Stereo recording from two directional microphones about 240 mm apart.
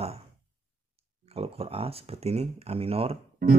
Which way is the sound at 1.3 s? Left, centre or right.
Right.